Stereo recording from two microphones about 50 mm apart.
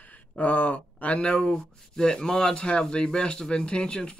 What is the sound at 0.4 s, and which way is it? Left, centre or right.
Speech, left.